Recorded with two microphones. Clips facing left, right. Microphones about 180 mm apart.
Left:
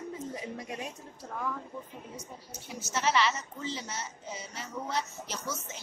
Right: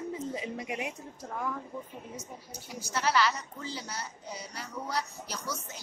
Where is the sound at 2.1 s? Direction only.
5° right (ahead or behind).